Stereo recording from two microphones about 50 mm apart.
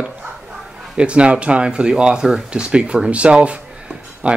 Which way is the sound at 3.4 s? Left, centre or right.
Right.